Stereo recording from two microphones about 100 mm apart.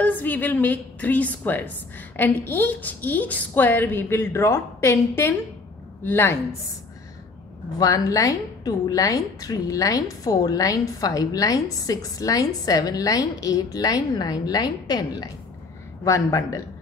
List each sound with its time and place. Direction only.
0.0 s a woman's voice: 15° left (ahead or behind)
7.8 s a woman's voice: 35° left (ahead or behind)